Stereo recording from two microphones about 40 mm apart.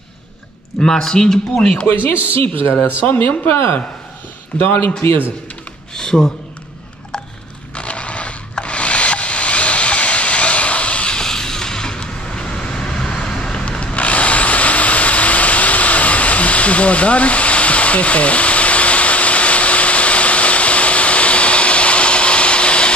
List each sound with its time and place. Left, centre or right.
0.7 s a man's voice: centre
1.9 s a man's voice: left
4.6 s a man's voice: left
5.9 s a man's voice: centre
7.7 s scrape: left
8.5 s wood: left
11.1 s vehicle: centre